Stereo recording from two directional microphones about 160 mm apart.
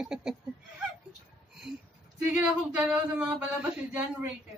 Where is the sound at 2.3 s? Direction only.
10° right (ahead or behind).